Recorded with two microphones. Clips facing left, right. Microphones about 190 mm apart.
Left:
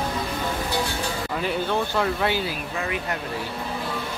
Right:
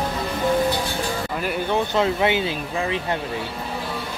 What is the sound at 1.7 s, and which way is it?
Speech, 20° right (ahead or behind).